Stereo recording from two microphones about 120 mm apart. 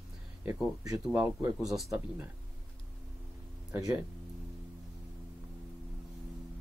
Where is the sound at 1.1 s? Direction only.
15° right (ahead or behind).